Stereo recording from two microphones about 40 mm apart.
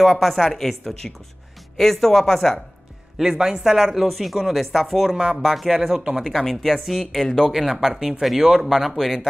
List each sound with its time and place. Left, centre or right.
0.0 s speech: centre
0.3 s speech: centre
3.2 s speech: centre
6.4 s speech: centre
7.4 s speech: centre